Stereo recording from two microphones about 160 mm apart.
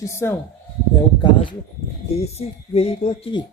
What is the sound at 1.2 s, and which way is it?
Speech, 30° left (ahead or behind).